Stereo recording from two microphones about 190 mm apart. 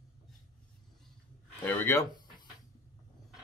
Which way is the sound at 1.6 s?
15° left (ahead or behind).